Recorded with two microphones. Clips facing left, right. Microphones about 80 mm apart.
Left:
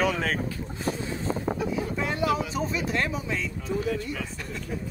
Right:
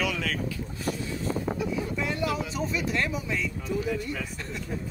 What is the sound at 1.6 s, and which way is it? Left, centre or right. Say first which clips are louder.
Vehicle: left 1 dB; left.